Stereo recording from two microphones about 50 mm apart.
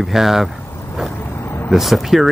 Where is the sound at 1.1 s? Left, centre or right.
Left.